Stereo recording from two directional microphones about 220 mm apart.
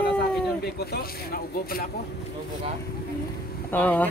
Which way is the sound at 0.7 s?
45° left (ahead or behind).